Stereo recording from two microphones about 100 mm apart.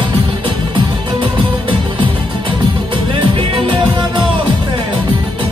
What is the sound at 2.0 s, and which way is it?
Music, 55° right (ahead or behind).